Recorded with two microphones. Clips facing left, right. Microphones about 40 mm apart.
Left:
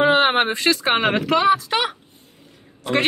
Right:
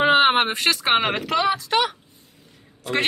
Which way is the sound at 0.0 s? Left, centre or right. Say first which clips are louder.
Even; centre.